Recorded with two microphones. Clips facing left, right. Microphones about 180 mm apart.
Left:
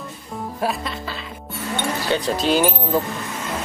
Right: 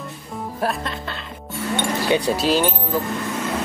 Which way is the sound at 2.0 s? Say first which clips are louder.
Right 1 dB; 10° right (ahead or behind).